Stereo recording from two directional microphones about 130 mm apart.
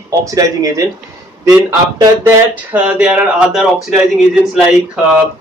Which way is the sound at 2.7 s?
10° right (ahead or behind).